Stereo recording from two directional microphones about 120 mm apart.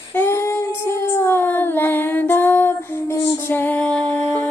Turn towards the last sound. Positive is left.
turn(degrees=10)  # may be behind; listen again after turning